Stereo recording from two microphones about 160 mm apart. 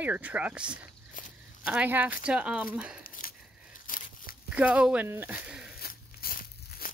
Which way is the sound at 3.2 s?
55° left (ahead or behind).